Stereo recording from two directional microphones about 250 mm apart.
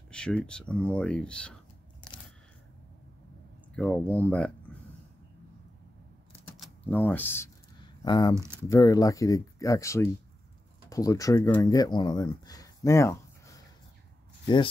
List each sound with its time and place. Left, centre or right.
0.1 s speech: centre
3.7 s speech: centre
6.5 s speech: centre
14.4 s speech: centre